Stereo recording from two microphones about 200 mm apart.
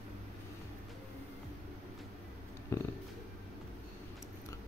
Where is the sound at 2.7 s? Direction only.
15° left (ahead or behind).